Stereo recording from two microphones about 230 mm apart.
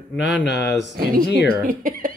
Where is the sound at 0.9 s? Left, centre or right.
Right.